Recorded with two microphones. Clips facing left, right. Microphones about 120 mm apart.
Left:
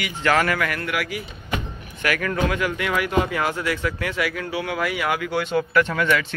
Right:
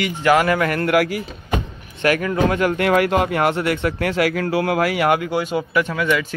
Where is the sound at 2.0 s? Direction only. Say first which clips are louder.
Right 5 dB; 25° right (ahead or behind).